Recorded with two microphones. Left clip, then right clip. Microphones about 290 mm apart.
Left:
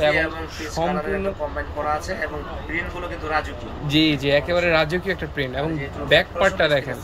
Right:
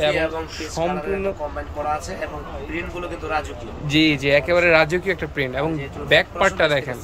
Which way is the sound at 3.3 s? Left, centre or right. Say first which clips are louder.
Left 2 dB; centre.